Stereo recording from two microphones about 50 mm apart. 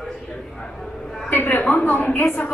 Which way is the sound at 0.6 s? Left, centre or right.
Centre.